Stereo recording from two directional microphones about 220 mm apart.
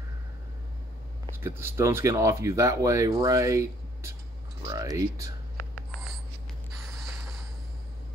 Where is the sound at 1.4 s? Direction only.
10° right (ahead or behind).